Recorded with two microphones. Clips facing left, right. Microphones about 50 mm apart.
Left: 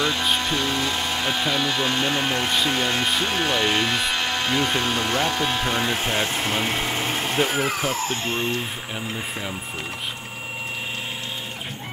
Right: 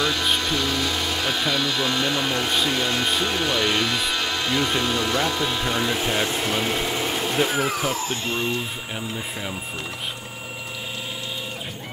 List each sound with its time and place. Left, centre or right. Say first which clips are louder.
0.0 s a sound: even; centre
0.4 s speech: even; centre
2.4 s speech: left 1 dB; centre
3.1 s speech: even; centre
3.3 s speech: left 1 dB; centre
4.8 s speech: even; left
5.6 s speech: even; centre
7.8 s speech: even; centre